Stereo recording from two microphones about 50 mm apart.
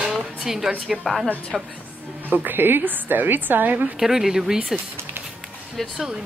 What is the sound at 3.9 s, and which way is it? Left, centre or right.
Speech, centre.